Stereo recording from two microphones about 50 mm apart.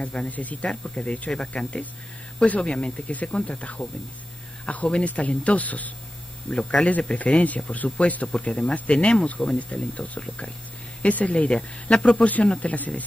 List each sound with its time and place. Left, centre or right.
0.0 s speech: left
6.5 s speech: centre